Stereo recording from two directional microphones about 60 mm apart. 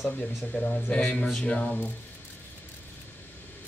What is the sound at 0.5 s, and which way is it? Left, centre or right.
Speech, centre.